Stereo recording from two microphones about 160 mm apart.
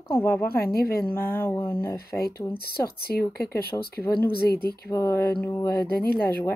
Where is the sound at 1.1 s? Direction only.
15° left (ahead or behind).